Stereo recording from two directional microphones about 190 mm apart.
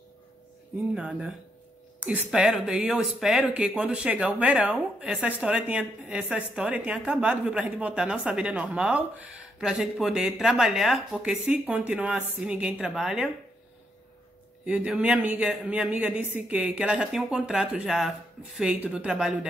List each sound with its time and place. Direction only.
0.9 s a woman's voice: 5° right (ahead or behind)
14.7 s a man's voice: 5° right (ahead or behind)